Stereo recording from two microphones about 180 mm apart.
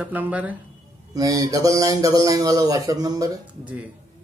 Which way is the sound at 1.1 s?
20° right (ahead or behind).